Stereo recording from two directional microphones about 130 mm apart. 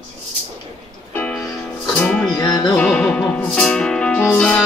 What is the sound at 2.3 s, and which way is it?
Music, 30° left (ahead or behind).